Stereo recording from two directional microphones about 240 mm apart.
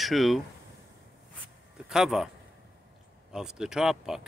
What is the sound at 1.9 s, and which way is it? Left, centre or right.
Speech, centre.